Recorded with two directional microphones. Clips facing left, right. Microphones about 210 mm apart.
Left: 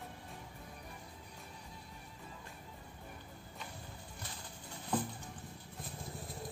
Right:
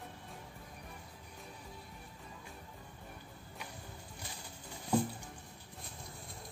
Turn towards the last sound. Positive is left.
turn(degrees=-10)  # may be behind; listen again after turning